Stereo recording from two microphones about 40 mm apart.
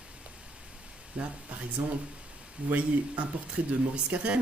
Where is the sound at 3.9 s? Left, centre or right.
Right.